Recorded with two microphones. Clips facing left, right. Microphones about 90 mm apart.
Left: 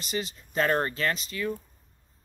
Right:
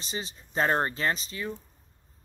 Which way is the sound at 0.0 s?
30° right (ahead or behind).